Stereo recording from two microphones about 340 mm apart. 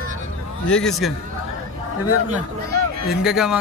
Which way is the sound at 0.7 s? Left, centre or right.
Centre.